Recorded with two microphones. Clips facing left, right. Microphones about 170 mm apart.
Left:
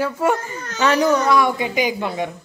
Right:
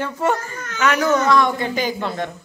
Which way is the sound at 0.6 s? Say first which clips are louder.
Left 2 dB; 30° left (ahead or behind).